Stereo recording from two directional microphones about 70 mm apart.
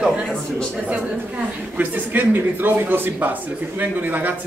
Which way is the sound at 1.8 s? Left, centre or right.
Right.